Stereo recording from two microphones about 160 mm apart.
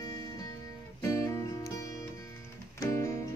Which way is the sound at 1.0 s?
20° left (ahead or behind).